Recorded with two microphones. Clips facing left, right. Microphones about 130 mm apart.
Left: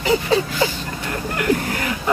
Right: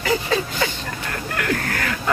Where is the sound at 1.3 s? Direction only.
15° left (ahead or behind).